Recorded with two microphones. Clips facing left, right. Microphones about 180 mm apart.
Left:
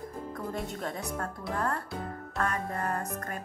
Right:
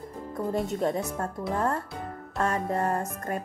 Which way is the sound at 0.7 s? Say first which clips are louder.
Right 7 dB; 25° right (ahead or behind).